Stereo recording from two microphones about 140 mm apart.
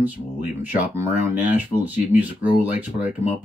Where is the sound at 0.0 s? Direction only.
15° right (ahead or behind).